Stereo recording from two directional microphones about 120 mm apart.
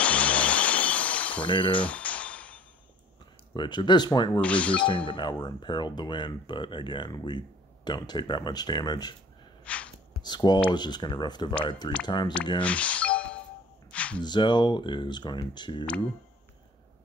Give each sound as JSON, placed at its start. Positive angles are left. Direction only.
{"t": 0.0, "sound": "music", "side_deg": 10}
{"t": 1.7, "sound": "a sound", "side_deg": 10}
{"t": 3.5, "sound": "speech", "side_deg": 40}
{"t": 4.4, "sound": "speech", "side_deg": 10}
{"t": 4.8, "sound": "speech", "side_deg": 45}
{"t": 9.7, "sound": "gasp", "side_deg": 10}
{"t": 10.2, "sound": "speech", "side_deg": 35}
{"t": 12.6, "sound": "music", "side_deg": 10}
{"t": 13.9, "sound": "a sound", "side_deg": 10}
{"t": 14.2, "sound": "speech", "side_deg": 40}